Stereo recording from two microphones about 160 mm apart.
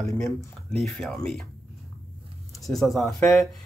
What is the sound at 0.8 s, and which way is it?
Speech, centre (ahead or behind).